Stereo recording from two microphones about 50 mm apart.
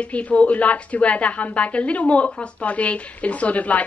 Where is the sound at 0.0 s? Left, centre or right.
Left.